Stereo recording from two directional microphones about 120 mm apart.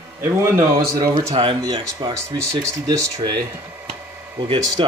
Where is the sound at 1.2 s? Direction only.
50° right (ahead or behind).